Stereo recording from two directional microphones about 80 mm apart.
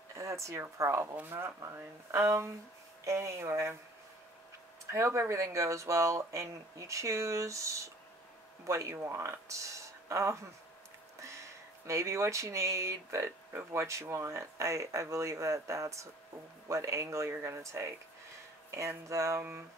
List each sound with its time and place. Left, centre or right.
0.1 s speech: right
4.9 s speech: right